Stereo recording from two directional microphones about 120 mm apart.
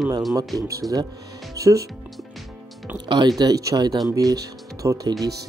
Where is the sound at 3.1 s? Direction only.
35° right (ahead or behind).